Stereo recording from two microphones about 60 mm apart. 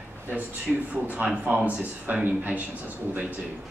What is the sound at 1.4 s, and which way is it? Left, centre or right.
Speech, right.